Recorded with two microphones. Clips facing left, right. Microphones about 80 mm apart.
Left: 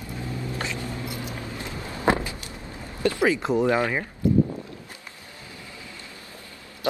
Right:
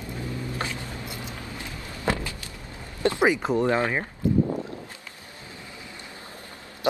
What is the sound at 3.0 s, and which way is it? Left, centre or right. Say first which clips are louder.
Speech: even; right.